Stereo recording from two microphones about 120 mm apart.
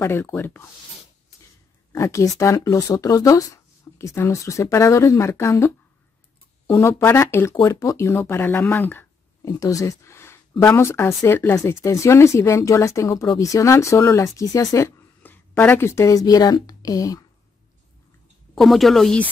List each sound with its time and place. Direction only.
0.0 s speech: 20° left (ahead or behind)
2.0 s speech: 25° left (ahead or behind)
6.7 s speech: 20° left (ahead or behind)
9.4 s speech: 30° left (ahead or behind)
18.5 s a woman's voice: centre (ahead or behind)